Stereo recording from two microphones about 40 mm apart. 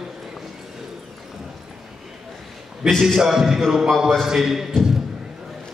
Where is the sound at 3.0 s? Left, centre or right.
Centre.